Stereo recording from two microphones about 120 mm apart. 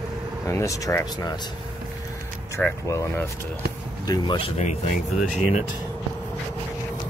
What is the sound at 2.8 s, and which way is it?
Speech, 25° left (ahead or behind).